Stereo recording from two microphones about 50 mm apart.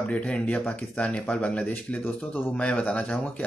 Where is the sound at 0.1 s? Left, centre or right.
Left.